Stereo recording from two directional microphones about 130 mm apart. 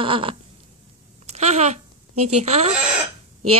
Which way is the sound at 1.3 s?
60° right (ahead or behind).